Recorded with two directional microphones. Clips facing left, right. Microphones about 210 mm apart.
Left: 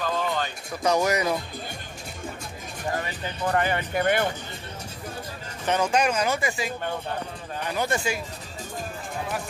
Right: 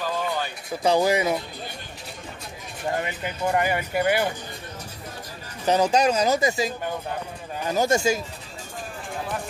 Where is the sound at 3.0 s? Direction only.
10° right (ahead or behind).